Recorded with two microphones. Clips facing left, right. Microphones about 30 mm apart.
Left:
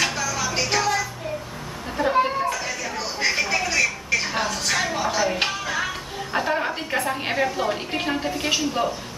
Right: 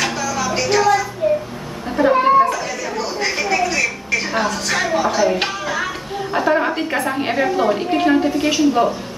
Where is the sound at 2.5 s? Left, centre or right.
Centre.